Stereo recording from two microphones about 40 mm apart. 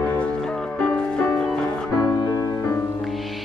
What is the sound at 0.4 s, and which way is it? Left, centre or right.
Music, centre.